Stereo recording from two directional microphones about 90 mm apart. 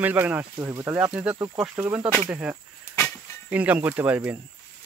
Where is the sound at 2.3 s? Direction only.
15° right (ahead or behind).